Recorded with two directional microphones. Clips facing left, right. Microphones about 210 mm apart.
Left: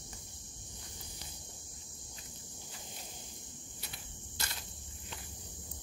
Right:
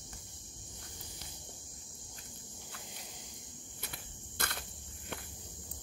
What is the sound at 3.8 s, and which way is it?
Cricket, 55° right (ahead or behind).